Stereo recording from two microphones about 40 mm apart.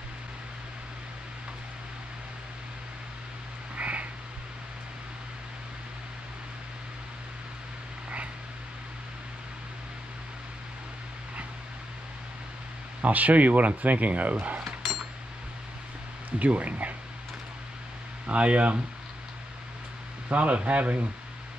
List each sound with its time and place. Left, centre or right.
3.7 s frog: right
13.0 s speech: right
14.6 s dishes: centre
16.3 s speech: right
18.2 s speech: right
20.2 s speech: right